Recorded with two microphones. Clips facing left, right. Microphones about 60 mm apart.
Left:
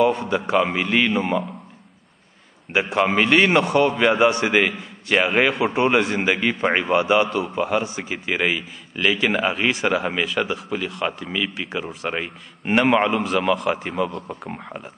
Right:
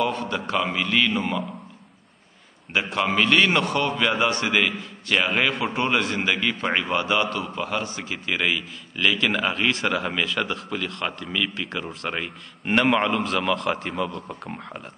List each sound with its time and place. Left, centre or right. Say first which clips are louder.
0.0 s a man's voice: left 6 dB; left
2.7 s a man's voice: left 4 dB; left